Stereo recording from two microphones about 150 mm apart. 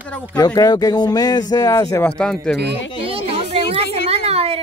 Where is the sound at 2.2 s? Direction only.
5° left (ahead or behind).